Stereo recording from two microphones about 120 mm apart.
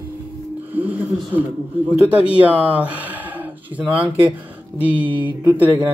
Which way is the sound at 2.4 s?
10° right (ahead or behind).